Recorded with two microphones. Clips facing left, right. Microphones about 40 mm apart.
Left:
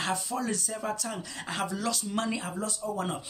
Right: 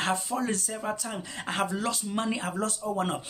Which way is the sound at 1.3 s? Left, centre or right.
Right.